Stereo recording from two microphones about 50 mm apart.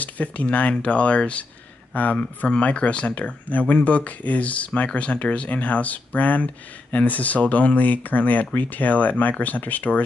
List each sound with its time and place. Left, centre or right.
0.0 s speech: left